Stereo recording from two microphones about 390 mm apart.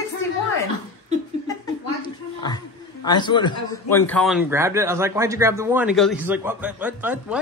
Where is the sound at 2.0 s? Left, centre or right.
Centre.